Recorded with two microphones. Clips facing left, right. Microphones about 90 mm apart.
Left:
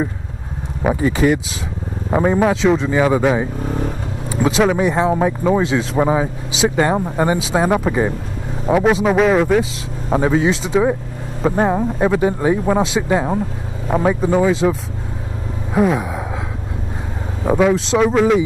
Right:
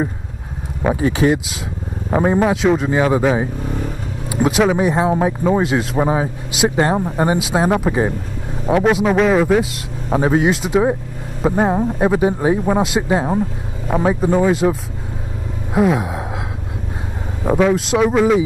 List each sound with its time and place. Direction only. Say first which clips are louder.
1.0 s speech: even; 5° right (ahead or behind)
2.0 s a sound: even; 5° left (ahead or behind)
2.3 s speech: even; 5° right (ahead or behind)
3.6 s vehicle: left 2 dB; 25° left (ahead or behind)
4.3 s speech: even; 5° right (ahead or behind)
15.7 s a sound: even; 10° right (ahead or behind)
17.5 s speech: even; 5° left (ahead or behind)